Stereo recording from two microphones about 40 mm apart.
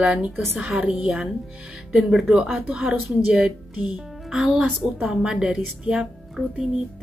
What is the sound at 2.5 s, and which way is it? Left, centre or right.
Speech, centre.